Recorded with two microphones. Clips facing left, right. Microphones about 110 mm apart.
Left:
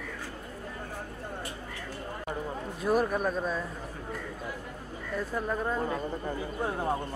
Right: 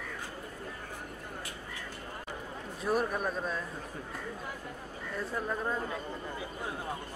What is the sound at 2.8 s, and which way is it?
Speech, centre (ahead or behind).